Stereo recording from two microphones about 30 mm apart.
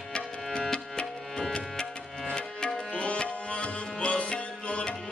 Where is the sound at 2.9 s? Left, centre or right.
Left.